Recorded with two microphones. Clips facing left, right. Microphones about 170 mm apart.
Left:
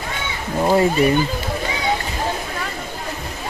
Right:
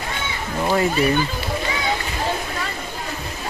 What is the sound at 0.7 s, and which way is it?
Speech, 20° left (ahead or behind).